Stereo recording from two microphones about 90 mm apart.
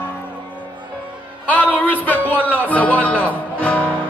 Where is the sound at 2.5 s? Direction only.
20° left (ahead or behind).